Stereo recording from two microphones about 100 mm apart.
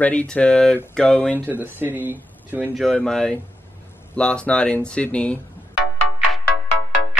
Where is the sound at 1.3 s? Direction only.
20° right (ahead or behind).